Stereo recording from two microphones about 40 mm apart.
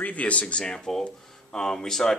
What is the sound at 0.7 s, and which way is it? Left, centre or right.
Speech, centre.